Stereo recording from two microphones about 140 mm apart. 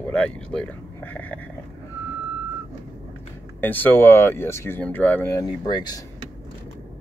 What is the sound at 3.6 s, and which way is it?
Speech, 15° left (ahead or behind).